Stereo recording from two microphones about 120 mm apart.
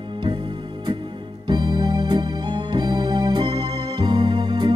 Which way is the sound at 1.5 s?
35° right (ahead or behind).